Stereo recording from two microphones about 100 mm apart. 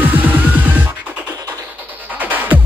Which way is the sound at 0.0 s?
15° right (ahead or behind).